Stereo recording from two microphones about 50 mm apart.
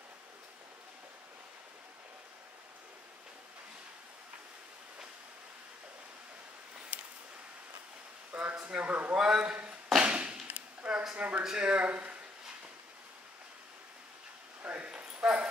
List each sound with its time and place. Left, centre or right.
8.3 s a sound: right
8.5 s speech: right
9.1 s a man's voice: centre
9.9 s a sound: right
11.1 s speech: right
14.6 s dog: right
15.2 s dog: centre